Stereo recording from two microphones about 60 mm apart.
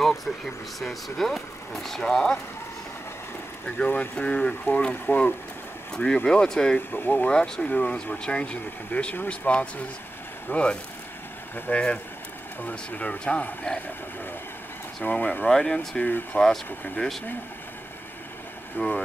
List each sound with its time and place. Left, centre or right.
0.0 s a sound: centre
0.7 s speech: centre
3.6 s speech: centre
6.9 s speech: left
7.2 s speech: centre
15.0 s speech: left
15.4 s speech: centre
16.3 s speech: left
18.8 s speech: left